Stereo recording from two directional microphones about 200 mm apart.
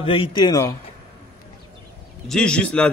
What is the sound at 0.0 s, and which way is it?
Speech, 25° left (ahead or behind).